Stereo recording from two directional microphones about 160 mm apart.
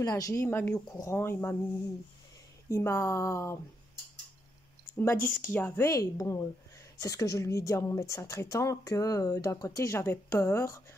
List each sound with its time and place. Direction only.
0.0 s speech: 20° left (ahead or behind)
5.5 s speech: 10° left (ahead or behind)